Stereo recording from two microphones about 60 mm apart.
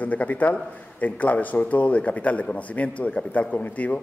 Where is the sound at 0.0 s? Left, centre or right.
Left.